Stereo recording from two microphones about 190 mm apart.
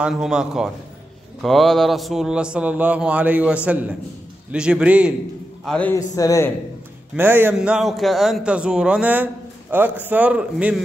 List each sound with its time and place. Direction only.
0.0 s a man's voice: 5° right (ahead or behind)
5.7 s speech: 5° left (ahead or behind)
5.9 s speech: 20° left (ahead or behind)
7.2 s a man's voice: 10° right (ahead or behind)